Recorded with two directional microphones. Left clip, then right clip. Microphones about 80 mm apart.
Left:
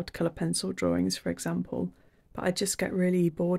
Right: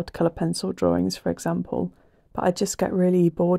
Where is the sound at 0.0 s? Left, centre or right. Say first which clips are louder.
Right 7 dB; right.